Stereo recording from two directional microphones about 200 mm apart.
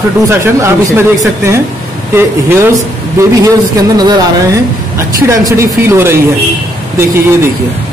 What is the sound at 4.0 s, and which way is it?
Speech, 20° right (ahead or behind).